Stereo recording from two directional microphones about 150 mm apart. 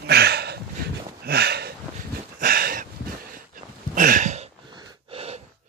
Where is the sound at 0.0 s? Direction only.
90° right.